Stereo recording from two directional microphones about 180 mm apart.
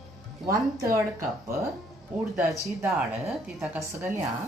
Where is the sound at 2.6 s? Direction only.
Centre (ahead or behind).